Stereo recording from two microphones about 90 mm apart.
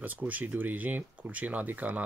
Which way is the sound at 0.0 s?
20° right (ahead or behind).